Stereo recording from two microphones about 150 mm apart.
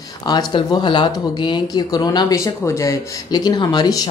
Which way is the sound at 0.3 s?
30° left (ahead or behind).